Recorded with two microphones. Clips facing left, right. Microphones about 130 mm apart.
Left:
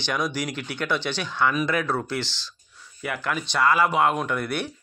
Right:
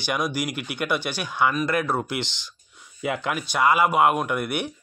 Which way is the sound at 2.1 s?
20° right (ahead or behind).